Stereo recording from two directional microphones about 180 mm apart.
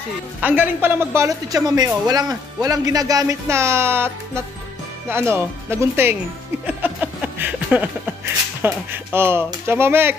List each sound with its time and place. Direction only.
0.4 s a woman's voice: 10° right (ahead or behind)
5.1 s a woman's voice: 15° right (ahead or behind)
6.6 s a sound: 5° right (ahead or behind)
8.6 s a woman's voice: 10° right (ahead or behind)